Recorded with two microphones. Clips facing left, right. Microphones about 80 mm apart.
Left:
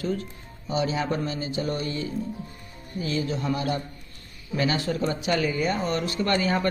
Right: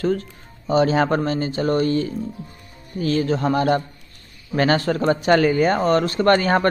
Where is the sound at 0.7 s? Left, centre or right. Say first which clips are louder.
Right 9 dB; right.